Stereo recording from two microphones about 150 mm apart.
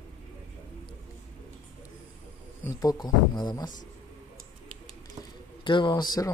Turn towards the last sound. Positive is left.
turn(degrees=25)  # may be behind; listen again after turning